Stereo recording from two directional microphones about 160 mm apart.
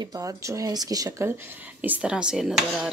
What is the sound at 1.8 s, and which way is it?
Speech, 10° right (ahead or behind).